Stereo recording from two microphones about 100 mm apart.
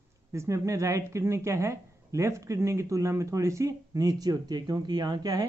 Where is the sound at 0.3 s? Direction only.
30° right (ahead or behind).